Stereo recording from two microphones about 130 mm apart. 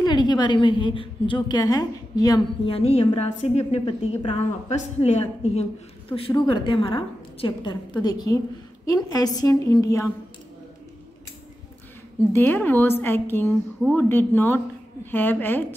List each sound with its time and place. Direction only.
0.0 s a woman's voice: 35° left (ahead or behind)
2.6 s a woman's voice: 50° left (ahead or behind)
6.1 s a woman's voice: 45° left (ahead or behind); by 10.0 s 25° left (ahead or behind)
12.3 s a woman's voice: 15° left (ahead or behind)